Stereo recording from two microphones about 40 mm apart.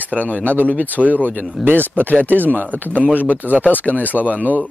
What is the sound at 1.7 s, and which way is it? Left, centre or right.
Speech, right.